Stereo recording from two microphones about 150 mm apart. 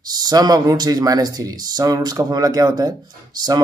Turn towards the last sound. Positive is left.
turn(degrees=-25)  # may be behind; listen again after turning